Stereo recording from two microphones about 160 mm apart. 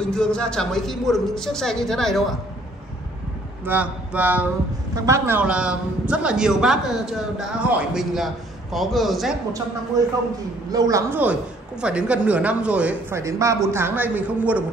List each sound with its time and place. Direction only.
0.0 s a man's voice: 5° left (ahead or behind)
3.6 s a man's voice: 10° right (ahead or behind)
10.0 s a woman's voice: 20° right (ahead or behind)
13.2 s speech: 20° right (ahead or behind)